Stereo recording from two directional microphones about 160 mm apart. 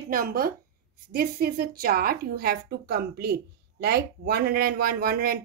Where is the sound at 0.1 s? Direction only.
65° right (ahead or behind).